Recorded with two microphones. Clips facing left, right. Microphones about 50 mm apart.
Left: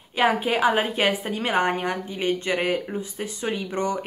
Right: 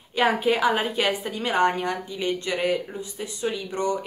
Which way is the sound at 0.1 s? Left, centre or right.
Centre.